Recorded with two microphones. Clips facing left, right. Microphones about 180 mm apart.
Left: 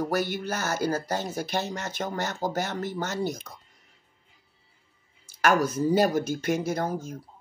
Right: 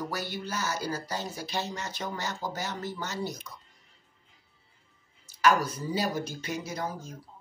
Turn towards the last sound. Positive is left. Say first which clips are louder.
# left 7 dB
turn(degrees=50)  # may be behind; listen again after turning